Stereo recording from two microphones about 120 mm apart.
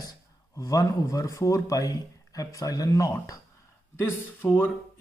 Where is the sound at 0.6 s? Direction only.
30° left (ahead or behind).